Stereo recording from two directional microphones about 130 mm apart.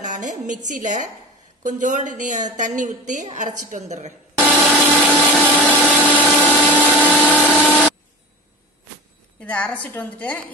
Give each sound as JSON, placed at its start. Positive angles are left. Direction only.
{"t": 0.0, "sound": "a woman's voice", "side_deg": -75}
{"t": 4.5, "sound": "a sound", "side_deg": 10}
{"t": 9.4, "sound": "a woman's voice", "side_deg": 10}